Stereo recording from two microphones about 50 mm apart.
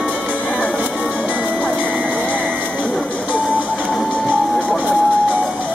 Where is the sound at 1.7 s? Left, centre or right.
Right.